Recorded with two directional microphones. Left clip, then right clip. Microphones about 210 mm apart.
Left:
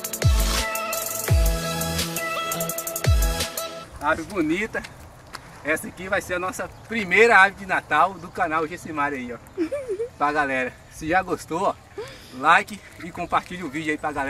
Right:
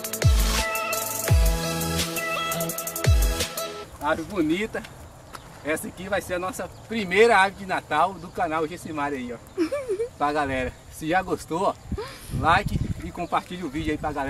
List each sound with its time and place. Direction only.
0.0 s music: centre (ahead or behind)
4.1 s speech: 10° right (ahead or behind)
11.6 s a sound: centre (ahead or behind)
13.1 s speech: 10° left (ahead or behind)